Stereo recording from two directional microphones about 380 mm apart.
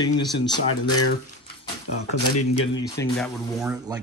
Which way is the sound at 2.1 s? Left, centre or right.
Left.